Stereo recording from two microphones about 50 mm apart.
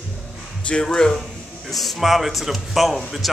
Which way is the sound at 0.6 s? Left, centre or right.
Centre.